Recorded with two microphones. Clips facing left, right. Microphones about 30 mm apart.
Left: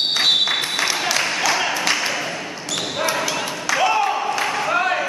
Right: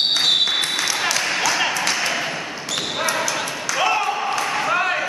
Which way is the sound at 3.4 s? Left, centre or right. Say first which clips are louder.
Left 2 dB; centre.